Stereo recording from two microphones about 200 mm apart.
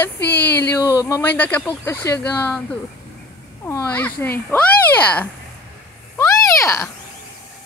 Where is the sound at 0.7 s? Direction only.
15° left (ahead or behind).